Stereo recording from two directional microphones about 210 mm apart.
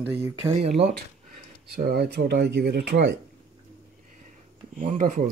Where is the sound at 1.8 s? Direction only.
45° right (ahead or behind).